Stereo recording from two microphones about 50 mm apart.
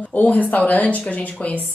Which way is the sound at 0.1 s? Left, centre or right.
Left.